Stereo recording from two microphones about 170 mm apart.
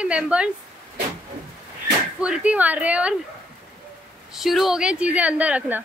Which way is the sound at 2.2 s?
5° right (ahead or behind).